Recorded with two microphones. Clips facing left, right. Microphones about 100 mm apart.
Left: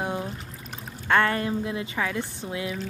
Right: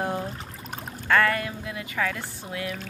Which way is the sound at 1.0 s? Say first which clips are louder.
Even; 25° left (ahead or behind).